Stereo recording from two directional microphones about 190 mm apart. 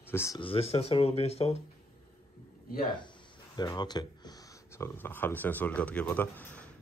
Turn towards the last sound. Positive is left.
turn(degrees=10)  # may be behind; listen again after turning